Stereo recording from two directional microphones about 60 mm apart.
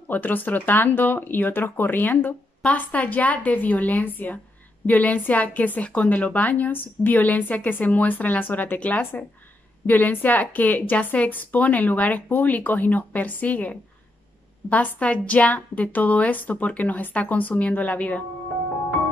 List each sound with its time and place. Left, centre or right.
0.1 s speech: left